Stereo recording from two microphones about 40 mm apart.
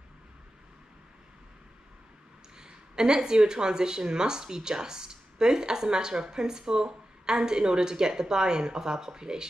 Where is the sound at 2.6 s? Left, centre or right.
Centre.